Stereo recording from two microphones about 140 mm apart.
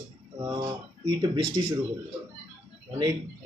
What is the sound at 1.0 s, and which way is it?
Speech, 35° right (ahead or behind).